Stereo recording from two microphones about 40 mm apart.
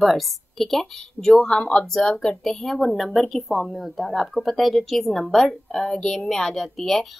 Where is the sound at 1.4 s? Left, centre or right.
Left.